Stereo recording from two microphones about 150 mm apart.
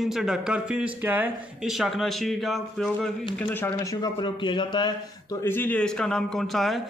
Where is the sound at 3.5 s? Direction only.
15° left (ahead or behind).